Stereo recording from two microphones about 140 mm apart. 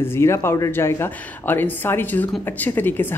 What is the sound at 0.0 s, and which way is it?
Speech, 15° left (ahead or behind).